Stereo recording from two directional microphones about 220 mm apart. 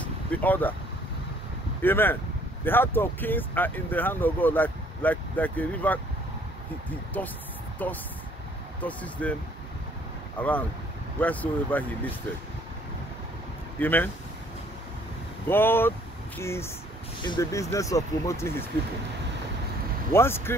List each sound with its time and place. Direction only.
0.3 s speech: 5° left (ahead or behind)
1.8 s speech: 10° left (ahead or behind)
7.2 s speech: 5° left (ahead or behind)
13.7 s speech: 10° left (ahead or behind)
15.4 s speech: 10° left (ahead or behind)
20.1 s speech: 10° left (ahead or behind)